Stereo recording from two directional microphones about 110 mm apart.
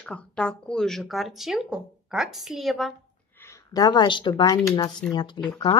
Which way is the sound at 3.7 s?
35° left (ahead or behind).